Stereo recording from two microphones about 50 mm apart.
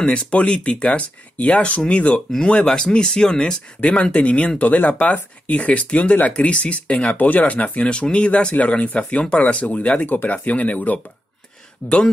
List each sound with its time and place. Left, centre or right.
0.0 s speech: left